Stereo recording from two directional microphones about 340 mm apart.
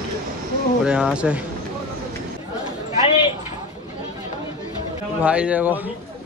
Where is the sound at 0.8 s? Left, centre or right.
Centre.